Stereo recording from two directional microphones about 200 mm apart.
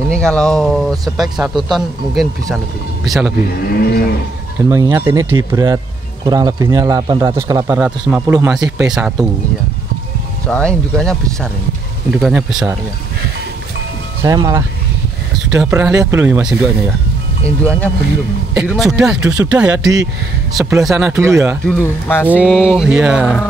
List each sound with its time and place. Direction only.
0.1 s speech: 5° left (ahead or behind)
3.6 s speech: 50° left (ahead or behind)
4.6 s a man's voice: 15° right (ahead or behind)
8.6 s speech: centre (ahead or behind)
10.4 s speech: 5° left (ahead or behind)
14.2 s a man's voice: 20° right (ahead or behind)
15.3 s a man's voice: centre (ahead or behind)
17.6 s a man's voice: 5° left (ahead or behind); by 21.5 s 15° right (ahead or behind)
21.8 s speech: 10° left (ahead or behind)
22.3 s speech: 5° right (ahead or behind)